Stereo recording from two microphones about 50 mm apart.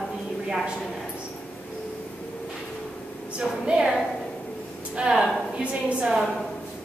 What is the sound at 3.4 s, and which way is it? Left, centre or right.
Speech, centre.